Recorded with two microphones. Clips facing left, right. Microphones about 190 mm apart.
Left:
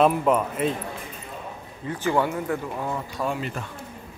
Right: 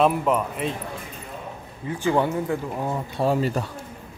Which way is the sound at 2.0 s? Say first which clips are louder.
Right 2 dB; 20° right (ahead or behind).